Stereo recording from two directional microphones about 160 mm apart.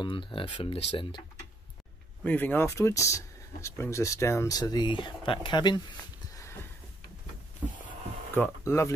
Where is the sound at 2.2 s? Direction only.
10° left (ahead or behind); by 5.8 s 30° left (ahead or behind).